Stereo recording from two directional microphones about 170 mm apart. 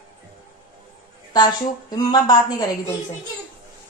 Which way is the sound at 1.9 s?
25° left (ahead or behind).